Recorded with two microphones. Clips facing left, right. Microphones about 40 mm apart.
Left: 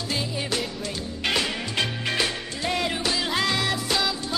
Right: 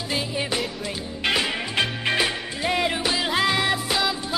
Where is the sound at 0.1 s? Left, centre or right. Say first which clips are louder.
Right 2 dB; centre.